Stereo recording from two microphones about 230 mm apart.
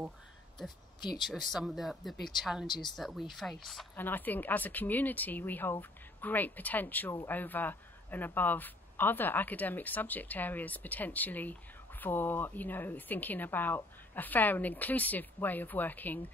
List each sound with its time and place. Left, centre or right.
1.2 s speech: centre
2.6 s speech: centre
3.0 s speech: centre